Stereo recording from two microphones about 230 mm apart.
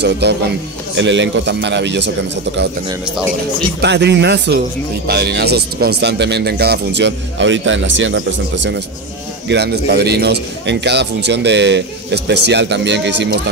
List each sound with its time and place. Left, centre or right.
0.0 s a man's voice: right
3.8 s a man's voice: right